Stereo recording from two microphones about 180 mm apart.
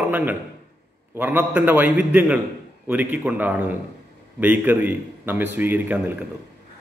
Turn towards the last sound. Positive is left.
turn(degrees=-10)  # may be behind; listen again after turning